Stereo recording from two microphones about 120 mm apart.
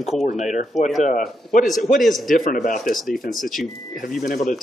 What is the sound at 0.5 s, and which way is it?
Speech, 90° left.